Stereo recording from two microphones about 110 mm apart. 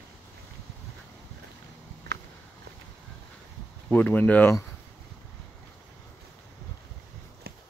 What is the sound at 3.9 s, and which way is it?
Speech, 15° left (ahead or behind).